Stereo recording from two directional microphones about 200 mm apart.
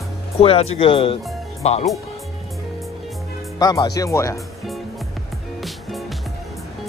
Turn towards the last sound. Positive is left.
turn(degrees=0)  # may be behind; listen again after turning